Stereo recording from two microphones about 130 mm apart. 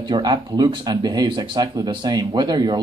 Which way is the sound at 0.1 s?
35° right (ahead or behind).